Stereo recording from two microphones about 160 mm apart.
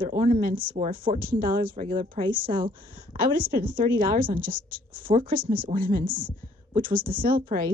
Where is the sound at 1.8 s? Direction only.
35° right (ahead or behind).